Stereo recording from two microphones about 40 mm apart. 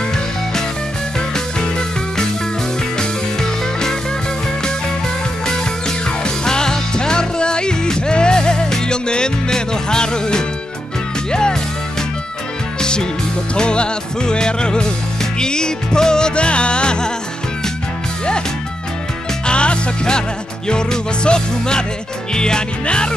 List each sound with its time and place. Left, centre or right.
5.5 s music: centre
13.6 s music: left
19.4 s music: left